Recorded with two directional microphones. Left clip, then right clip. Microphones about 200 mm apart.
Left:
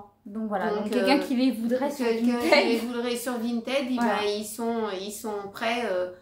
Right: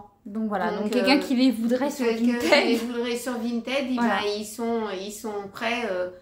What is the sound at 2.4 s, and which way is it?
Speech, 20° right (ahead or behind).